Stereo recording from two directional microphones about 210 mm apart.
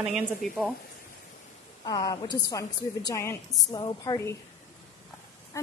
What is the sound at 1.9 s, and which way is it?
A woman's voice, 20° left (ahead or behind).